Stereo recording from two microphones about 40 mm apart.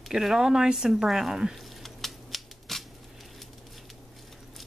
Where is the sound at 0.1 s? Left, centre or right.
Centre.